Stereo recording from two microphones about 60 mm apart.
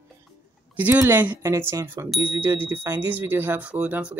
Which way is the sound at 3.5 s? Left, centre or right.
Right.